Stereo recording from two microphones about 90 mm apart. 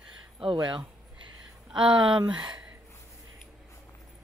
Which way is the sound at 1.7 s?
60° right (ahead or behind).